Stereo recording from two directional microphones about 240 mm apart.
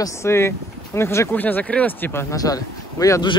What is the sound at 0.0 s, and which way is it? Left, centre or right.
Speech, centre.